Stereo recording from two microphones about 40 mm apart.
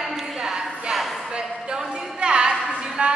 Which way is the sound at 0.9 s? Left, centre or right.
Centre.